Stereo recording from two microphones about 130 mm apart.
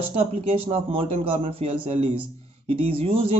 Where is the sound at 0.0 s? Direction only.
50° right (ahead or behind).